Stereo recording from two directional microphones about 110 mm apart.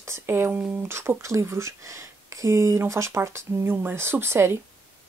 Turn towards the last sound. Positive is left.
turn(degrees=-25)  # may be behind; listen again after turning